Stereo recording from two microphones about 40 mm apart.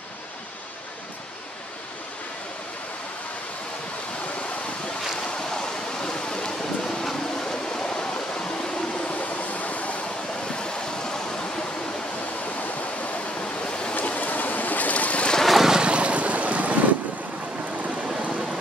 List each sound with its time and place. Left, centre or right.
5.2 s waves: centre
9.1 s waterfall: left
10.6 s a sound: left
12.4 s waterfall: left
13.6 s waves: left
13.9 s a sound: left
15.4 s boat: centre
15.7 s boat: right
17.8 s vehicle: right